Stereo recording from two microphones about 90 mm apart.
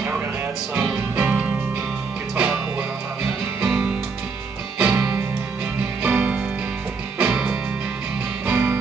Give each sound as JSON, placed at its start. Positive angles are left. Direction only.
{"t": 1.1, "sound": "music", "side_deg": -15}
{"t": 3.6, "sound": "music", "side_deg": -10}
{"t": 6.0, "sound": "music", "side_deg": -15}